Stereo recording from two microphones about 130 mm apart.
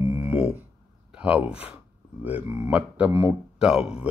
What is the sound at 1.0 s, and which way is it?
Speech, 10° right (ahead or behind).